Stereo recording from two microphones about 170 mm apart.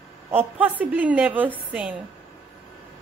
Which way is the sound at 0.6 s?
10° right (ahead or behind).